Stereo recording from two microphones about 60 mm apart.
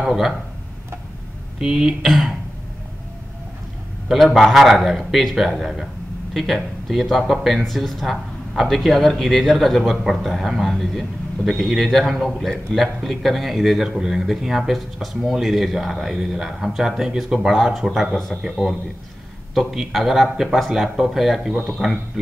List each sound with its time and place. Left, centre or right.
0.0 s speech: centre
1.6 s speech: centre
4.1 s speech: centre